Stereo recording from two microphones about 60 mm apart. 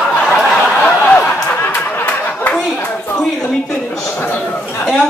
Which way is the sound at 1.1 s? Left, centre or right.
Left.